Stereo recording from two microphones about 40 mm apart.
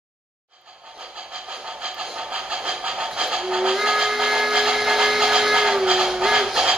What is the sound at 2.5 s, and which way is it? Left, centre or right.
Steam whistle, right.